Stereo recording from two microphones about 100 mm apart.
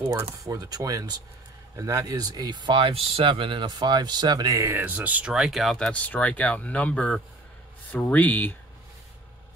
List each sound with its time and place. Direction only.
0.2 s speech: 35° right (ahead or behind)
4.6 s speech: 25° right (ahead or behind); by 8.5 s 15° left (ahead or behind)